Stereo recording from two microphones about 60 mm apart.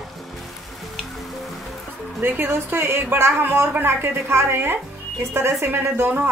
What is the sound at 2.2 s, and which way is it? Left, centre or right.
Speech, right.